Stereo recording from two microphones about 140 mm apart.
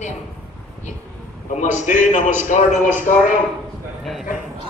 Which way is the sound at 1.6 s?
60° left (ahead or behind).